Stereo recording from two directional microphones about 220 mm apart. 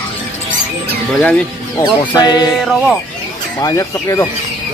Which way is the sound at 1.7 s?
20° left (ahead or behind).